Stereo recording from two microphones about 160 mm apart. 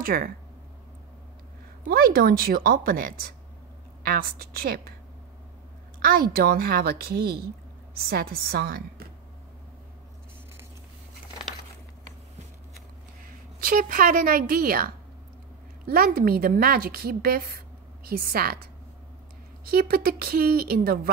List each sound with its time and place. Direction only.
0.0 s speech: 60° right (ahead or behind)
1.9 s a woman's voice: 70° right (ahead or behind)
5.9 s a sound: 65° right (ahead or behind)
6.3 s a woman's voice: 70° right (ahead or behind)
13.6 s a woman's voice: 65° right (ahead or behind)
19.6 s a woman's voice: 70° right (ahead or behind)